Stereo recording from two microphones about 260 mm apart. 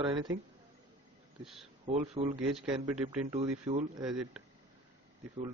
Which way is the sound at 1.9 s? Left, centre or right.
Right.